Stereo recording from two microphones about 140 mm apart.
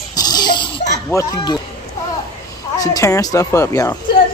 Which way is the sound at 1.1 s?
25° left (ahead or behind).